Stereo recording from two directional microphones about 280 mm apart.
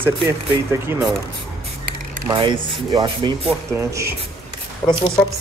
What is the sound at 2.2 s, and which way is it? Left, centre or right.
Speech, centre.